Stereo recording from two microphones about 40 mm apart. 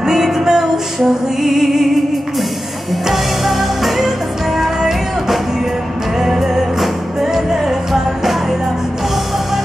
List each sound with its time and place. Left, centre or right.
0.0 s music: centre
3.1 s music: centre
7.9 s music: centre